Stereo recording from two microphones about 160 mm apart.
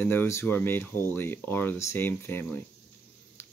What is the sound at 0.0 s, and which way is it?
Speech, 10° left (ahead or behind).